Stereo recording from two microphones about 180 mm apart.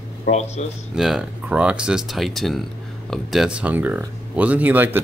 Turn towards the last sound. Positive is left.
turn(degrees=-10)  # may be behind; listen again after turning